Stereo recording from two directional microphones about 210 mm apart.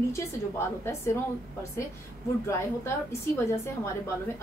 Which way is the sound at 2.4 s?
10° left (ahead or behind).